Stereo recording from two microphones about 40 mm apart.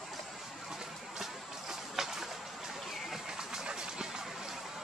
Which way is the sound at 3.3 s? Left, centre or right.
Centre.